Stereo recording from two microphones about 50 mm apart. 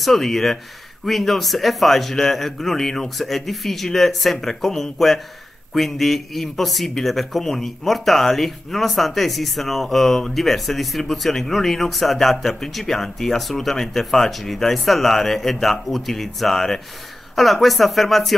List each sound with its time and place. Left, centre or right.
0.0 s speech: centre